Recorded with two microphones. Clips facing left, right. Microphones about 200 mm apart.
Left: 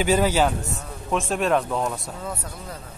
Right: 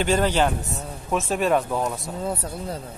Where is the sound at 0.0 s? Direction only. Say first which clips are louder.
Left 1 dB; 5° left (ahead or behind).